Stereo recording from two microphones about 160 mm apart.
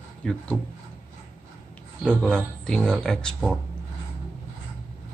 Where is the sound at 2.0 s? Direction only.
5° left (ahead or behind).